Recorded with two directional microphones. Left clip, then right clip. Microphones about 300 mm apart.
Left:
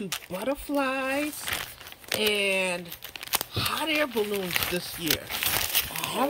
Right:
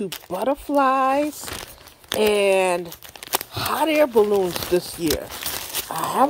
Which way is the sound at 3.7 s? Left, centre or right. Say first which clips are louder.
Right 11 dB; right.